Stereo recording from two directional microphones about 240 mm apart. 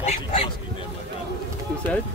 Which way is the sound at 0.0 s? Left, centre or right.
Left.